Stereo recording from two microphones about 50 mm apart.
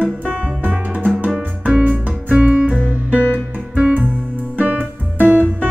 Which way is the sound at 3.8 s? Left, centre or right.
Right.